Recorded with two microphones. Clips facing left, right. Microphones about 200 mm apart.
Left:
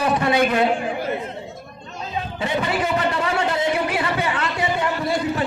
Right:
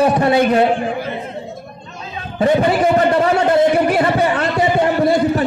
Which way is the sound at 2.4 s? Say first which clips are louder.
Right 10 dB; 50° right (ahead or behind).